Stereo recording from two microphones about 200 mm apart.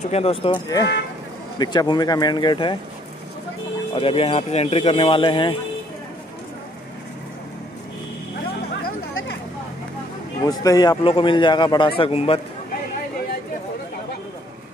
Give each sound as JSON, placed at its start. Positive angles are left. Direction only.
{"t": 0.0, "sound": "speech", "side_deg": 30}
{"t": 3.9, "sound": "speech", "side_deg": 30}
{"t": 10.4, "sound": "speech", "side_deg": 15}